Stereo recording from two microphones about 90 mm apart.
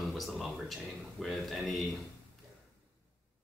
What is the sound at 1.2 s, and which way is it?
Speech, centre (ahead or behind).